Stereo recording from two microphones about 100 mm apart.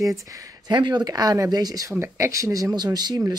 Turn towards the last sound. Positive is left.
turn(degrees=-45)  # may be behind; listen again after turning